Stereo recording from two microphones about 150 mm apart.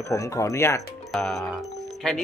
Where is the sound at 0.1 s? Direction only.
20° left (ahead or behind).